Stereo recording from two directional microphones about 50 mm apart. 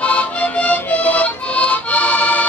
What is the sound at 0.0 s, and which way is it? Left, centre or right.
Music, left.